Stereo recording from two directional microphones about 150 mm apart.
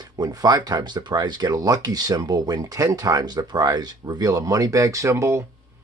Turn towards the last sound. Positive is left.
turn(degrees=-20)  # may be behind; listen again after turning